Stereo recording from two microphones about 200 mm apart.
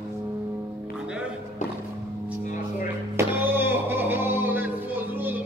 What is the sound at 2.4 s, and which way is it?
Music, 40° left (ahead or behind).